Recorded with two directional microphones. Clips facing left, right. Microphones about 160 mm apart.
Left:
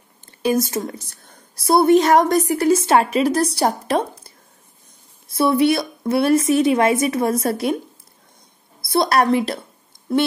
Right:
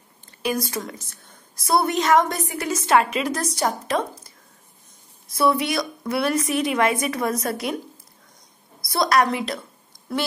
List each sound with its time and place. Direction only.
0.4 s a woman's voice: 25° left (ahead or behind)
5.3 s a woman's voice: 30° left (ahead or behind)
8.8 s a woman's voice: 30° left (ahead or behind)